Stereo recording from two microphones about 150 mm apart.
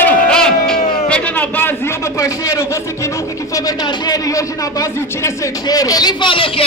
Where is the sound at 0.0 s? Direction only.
5° left (ahead or behind).